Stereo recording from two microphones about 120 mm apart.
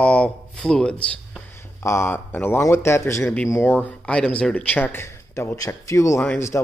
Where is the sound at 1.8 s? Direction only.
20° left (ahead or behind).